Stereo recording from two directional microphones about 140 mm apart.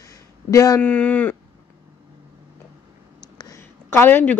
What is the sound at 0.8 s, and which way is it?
Speech, 10° left (ahead or behind).